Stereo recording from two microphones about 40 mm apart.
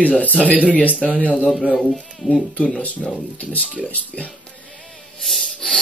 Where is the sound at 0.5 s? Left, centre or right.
Right.